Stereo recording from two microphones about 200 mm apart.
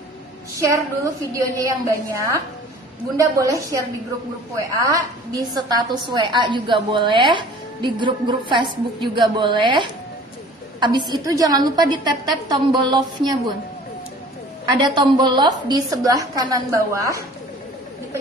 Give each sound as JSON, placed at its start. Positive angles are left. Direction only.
{"t": 0.6, "sound": "a woman's voice", "side_deg": -15}
{"t": 11.1, "sound": "a woman's voice", "side_deg": -20}
{"t": 14.8, "sound": "a woman's voice", "side_deg": -20}